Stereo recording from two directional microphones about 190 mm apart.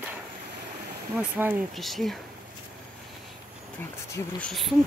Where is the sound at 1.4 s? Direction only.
10° right (ahead or behind).